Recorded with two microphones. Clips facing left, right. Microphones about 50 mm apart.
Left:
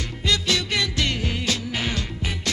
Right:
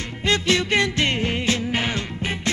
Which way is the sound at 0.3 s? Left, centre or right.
Right.